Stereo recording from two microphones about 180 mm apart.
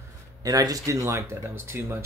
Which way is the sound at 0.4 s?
20° right (ahead or behind).